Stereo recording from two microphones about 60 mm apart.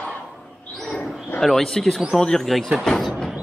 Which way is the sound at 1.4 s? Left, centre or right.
Centre.